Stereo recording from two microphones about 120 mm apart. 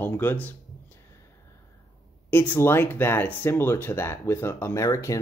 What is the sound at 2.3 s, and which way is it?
Speech, 15° left (ahead or behind).